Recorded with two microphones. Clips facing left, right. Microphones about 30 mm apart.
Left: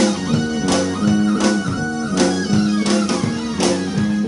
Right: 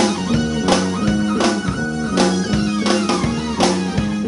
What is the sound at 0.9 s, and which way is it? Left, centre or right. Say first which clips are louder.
Music: left 2 dB; right.